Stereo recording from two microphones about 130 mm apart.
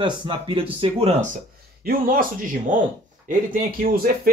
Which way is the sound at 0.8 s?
55° right (ahead or behind).